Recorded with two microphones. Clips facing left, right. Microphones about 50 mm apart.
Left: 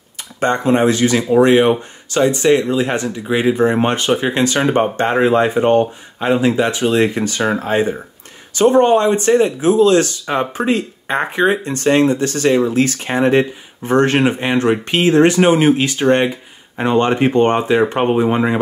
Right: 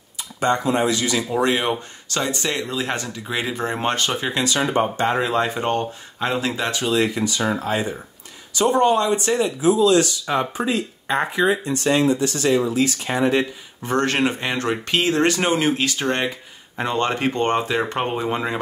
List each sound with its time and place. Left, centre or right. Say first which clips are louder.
0.4 s speech: left 5 dB; left
1.3 s speech: left 10 dB; centre
4.3 s speech: left 6 dB; left
6.9 s speech: left 5 dB; left
9.4 s speech: left 5 dB; left
13.0 s speech: left 5 dB; left
13.9 s speech: left 6 dB; left